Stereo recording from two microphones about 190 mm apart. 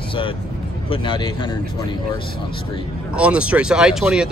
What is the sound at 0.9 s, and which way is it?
Speech, 25° left (ahead or behind).